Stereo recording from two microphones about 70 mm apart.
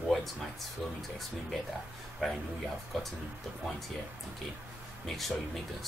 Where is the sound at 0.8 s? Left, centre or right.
Centre.